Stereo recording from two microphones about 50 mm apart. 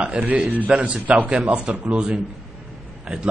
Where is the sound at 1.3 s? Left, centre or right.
Right.